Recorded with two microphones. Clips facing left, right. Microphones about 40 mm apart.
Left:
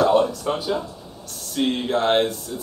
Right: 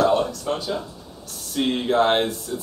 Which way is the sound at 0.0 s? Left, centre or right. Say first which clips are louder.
Left 2 dB; centre.